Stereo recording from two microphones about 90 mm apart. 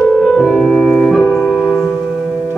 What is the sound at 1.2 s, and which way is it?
Organ, 10° left (ahead or behind).